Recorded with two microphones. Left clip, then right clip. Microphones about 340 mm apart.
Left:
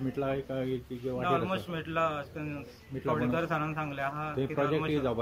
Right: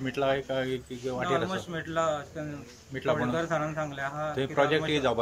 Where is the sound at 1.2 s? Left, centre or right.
Centre.